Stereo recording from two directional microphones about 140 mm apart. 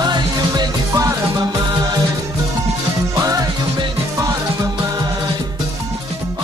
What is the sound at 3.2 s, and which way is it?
Music, 25° right (ahead or behind).